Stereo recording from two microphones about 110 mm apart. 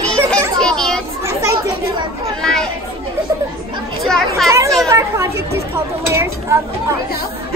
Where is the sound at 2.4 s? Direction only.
5° left (ahead or behind).